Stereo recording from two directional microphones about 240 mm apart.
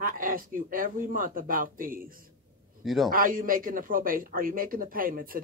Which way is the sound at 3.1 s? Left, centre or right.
Right.